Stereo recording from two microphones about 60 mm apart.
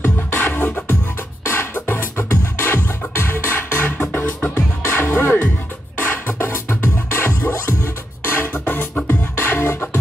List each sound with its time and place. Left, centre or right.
0.0 s music: left
1.4 s music: left